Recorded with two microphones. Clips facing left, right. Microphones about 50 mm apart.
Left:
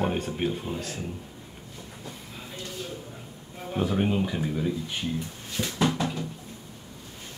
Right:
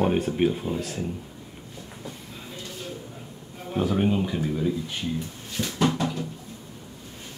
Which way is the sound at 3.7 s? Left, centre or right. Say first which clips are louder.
Right 2 dB; centre.